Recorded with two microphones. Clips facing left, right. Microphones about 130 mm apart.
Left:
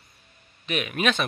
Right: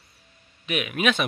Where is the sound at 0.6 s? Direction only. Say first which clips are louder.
Right 1 dB; 5° right (ahead or behind).